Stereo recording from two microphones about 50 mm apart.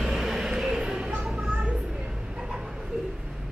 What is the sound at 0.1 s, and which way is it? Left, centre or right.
Vehicle, centre.